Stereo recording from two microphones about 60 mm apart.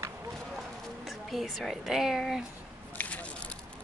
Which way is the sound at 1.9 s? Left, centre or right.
Centre.